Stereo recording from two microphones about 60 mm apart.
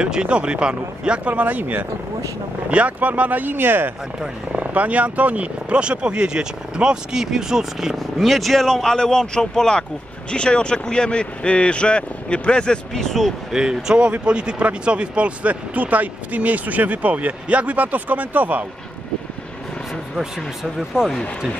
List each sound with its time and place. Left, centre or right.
0.0 s speech: centre; by 3.9 s right
4.5 s speech: right; by 13.3 s centre
13.5 s speech: centre; by 18.7 s right
20.9 s speech: centre